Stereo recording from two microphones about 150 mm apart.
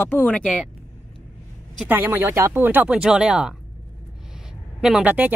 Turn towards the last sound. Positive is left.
turn(degrees=-10)  # may be behind; listen again after turning